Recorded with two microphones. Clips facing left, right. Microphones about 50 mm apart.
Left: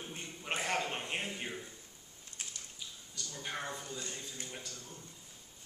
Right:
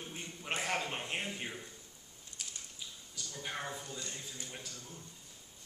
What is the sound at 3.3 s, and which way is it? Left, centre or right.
A man's voice, centre.